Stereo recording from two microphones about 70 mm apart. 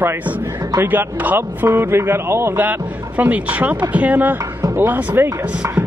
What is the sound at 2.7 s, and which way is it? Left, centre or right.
Speech, right.